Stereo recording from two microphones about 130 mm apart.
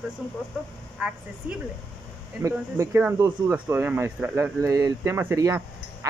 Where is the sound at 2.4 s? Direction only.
20° right (ahead or behind).